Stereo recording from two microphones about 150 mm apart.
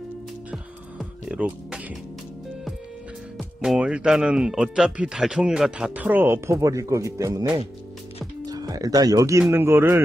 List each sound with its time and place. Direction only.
0.5 s music: 10° right (ahead or behind)
3.3 s speech: 5° right (ahead or behind); by 7.4 s 20° right (ahead or behind)
8.5 s music: 25° right (ahead or behind)
9.5 s speech: 15° right (ahead or behind)